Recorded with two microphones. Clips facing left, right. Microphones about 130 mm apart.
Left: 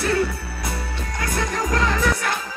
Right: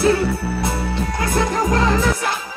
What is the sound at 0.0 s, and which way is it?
Music, 25° right (ahead or behind).